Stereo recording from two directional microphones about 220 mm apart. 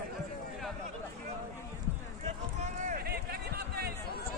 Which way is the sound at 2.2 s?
35° right (ahead or behind).